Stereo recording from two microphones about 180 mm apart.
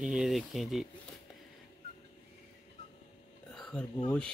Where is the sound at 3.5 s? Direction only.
5° left (ahead or behind).